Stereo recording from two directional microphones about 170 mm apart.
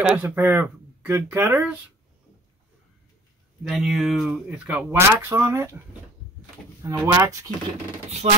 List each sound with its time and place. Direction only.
0.0 s speech: 10° right (ahead or behind)
3.6 s speech: centre (ahead or behind)
6.8 s speech: 15° right (ahead or behind)
8.2 s speech: 35° right (ahead or behind)